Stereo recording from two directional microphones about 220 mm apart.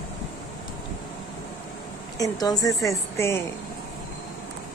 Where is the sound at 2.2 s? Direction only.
15° left (ahead or behind).